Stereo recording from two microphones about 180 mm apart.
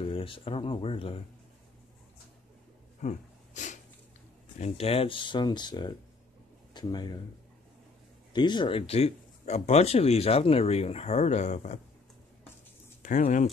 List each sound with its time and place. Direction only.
0.0 s speech: 30° left (ahead or behind)
3.0 s a sound: 40° left (ahead or behind)
4.6 s speech: 35° left (ahead or behind)
8.3 s speech: 25° left (ahead or behind)
13.0 s speech: 45° left (ahead or behind)